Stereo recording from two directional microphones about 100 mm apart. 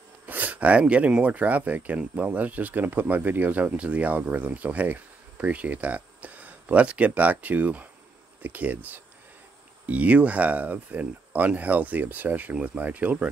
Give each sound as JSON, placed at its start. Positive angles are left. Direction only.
{"t": 0.3, "sound": "speech", "side_deg": -15}